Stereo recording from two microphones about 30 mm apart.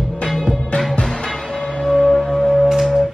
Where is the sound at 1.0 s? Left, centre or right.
Centre.